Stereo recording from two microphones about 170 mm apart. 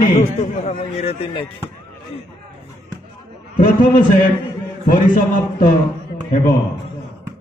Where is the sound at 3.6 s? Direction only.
55° left (ahead or behind).